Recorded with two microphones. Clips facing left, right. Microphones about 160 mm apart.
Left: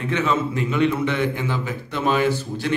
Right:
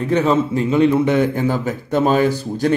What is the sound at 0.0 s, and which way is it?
A man's voice, 40° right (ahead or behind).